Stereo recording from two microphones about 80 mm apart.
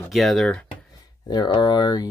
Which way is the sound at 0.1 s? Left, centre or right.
Centre.